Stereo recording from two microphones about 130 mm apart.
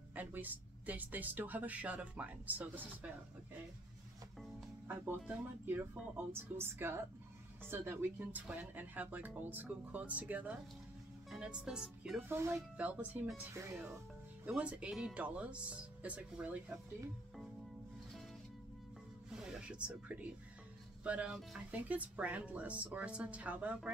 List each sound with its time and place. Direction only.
0.1 s speech: 15° right (ahead or behind)
4.8 s speech: 15° right (ahead or behind)
12.3 s speech: 20° right (ahead or behind)
14.4 s speech: 10° right (ahead or behind)
19.3 s a sound: 5° right (ahead or behind)
21.0 s speech: 10° right (ahead or behind)